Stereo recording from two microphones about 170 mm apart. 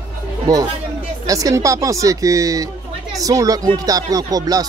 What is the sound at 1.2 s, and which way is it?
Speech, 20° right (ahead or behind).